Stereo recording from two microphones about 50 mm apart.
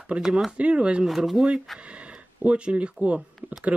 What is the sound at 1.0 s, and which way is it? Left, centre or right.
Speech, centre.